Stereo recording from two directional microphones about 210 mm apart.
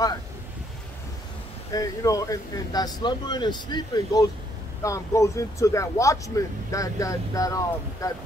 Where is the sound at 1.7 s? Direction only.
15° left (ahead or behind).